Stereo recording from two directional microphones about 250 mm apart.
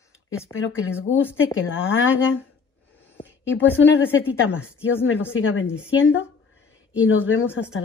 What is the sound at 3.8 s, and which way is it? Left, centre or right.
Speech, left.